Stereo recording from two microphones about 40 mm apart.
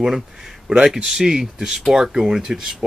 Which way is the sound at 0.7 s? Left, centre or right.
Centre.